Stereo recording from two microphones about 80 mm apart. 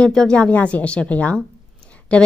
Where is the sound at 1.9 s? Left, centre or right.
Centre.